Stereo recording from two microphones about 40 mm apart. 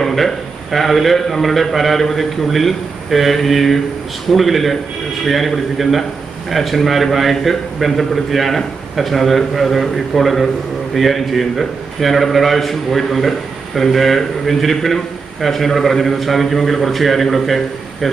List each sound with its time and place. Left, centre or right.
0.0 s a man's voice: centre